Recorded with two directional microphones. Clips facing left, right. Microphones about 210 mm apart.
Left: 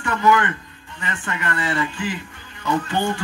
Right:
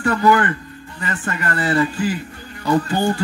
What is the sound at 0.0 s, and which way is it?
Speech, 35° right (ahead or behind).